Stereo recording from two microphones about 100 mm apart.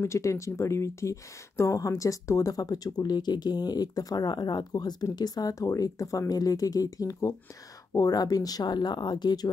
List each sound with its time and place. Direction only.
0.0 s speech: 30° left (ahead or behind)